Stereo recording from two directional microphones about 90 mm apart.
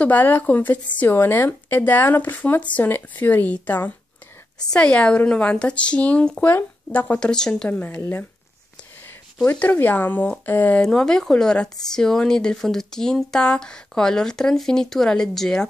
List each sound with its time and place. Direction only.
0.0 s a woman's voice: 20° left (ahead or behind)
9.5 s a woman's voice: 20° left (ahead or behind)
10.8 s speech: 10° left (ahead or behind)